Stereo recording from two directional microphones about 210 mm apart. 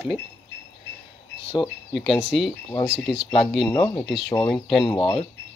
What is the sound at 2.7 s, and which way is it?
Speech, 20° left (ahead or behind).